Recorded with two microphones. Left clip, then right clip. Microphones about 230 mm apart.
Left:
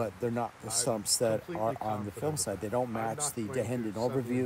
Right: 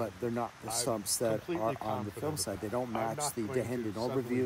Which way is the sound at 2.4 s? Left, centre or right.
Left.